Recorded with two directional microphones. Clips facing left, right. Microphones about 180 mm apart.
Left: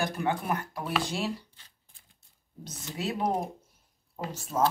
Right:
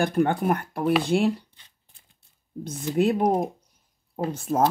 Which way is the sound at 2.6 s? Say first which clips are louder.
Right 12 dB; 55° right (ahead or behind).